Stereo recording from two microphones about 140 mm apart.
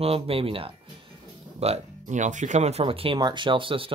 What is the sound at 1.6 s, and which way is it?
Speech, 55° right (ahead or behind).